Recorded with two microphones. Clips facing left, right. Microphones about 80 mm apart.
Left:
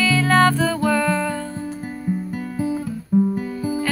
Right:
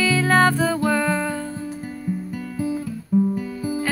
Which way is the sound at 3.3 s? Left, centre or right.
Left.